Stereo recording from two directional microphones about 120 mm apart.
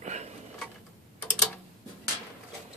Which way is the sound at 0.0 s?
70° right (ahead or behind).